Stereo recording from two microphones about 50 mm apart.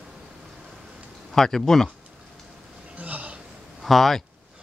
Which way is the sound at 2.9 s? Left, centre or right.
Right.